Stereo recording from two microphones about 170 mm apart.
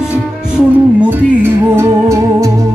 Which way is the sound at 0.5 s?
10° right (ahead or behind).